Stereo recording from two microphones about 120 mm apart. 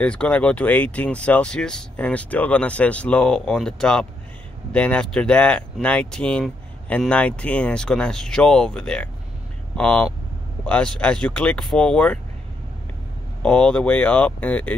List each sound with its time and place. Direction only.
0.0 s speech: 10° left (ahead or behind)
13.4 s speech: 10° left (ahead or behind)